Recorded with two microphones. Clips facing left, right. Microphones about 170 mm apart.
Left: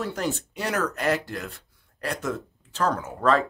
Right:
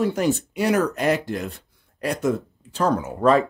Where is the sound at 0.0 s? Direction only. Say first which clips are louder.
Right 7 dB; 15° right (ahead or behind).